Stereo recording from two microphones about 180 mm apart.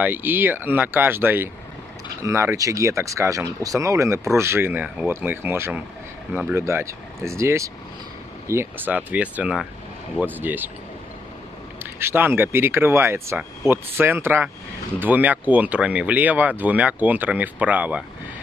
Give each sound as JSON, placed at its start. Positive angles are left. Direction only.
{"t": 0.0, "sound": "speech", "side_deg": -10}
{"t": 11.8, "sound": "speech", "side_deg": -15}